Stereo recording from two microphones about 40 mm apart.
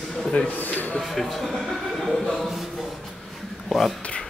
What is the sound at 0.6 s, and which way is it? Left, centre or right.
Speech, left.